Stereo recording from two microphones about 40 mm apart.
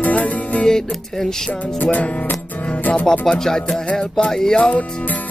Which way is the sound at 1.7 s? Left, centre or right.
Left.